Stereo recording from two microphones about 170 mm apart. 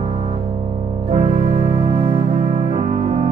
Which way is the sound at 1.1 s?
40° right (ahead or behind).